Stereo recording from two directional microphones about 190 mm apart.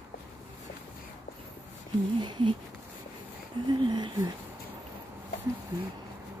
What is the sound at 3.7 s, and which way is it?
Speech, 25° right (ahead or behind).